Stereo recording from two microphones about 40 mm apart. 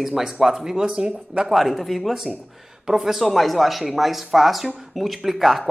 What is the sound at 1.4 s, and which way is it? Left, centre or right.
Speech, centre.